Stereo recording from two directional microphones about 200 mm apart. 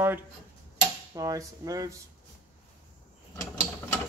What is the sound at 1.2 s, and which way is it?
Dishes, 15° right (ahead or behind).